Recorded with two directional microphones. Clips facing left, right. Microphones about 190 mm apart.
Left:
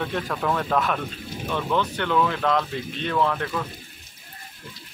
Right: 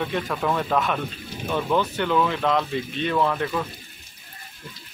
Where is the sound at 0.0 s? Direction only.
5° right (ahead or behind).